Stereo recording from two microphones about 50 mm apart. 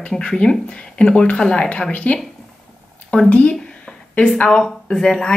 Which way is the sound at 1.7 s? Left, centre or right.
Left.